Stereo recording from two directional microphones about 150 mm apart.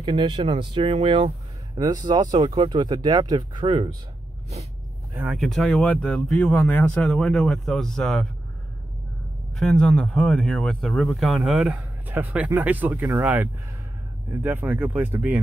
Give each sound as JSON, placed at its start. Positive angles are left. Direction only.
{"t": 0.0, "sound": "speech", "side_deg": -30}
{"t": 1.8, "sound": "speech", "side_deg": -25}
{"t": 5.1, "sound": "speech", "side_deg": -5}
{"t": 9.6, "sound": "speech", "side_deg": 5}